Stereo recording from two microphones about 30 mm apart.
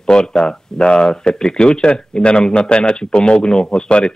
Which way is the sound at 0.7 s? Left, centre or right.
Left.